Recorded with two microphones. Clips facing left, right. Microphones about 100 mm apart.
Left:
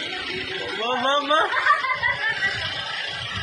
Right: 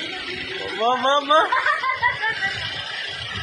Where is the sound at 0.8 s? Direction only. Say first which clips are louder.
Right 4 dB; 25° right (ahead or behind).